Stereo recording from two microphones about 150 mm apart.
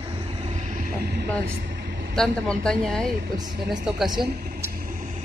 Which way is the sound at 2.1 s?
5° left (ahead or behind).